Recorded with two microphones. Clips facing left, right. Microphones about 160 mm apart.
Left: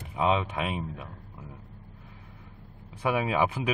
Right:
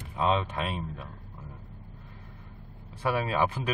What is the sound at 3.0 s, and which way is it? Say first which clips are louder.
Speech: left 1 dB; 10° left (ahead or behind).